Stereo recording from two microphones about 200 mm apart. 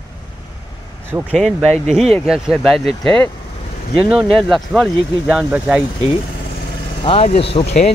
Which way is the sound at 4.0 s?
5° right (ahead or behind).